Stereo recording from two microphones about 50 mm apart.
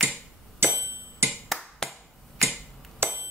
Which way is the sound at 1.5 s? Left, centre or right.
Centre.